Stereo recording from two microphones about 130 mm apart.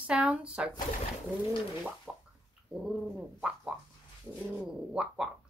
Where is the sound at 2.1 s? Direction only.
5° right (ahead or behind).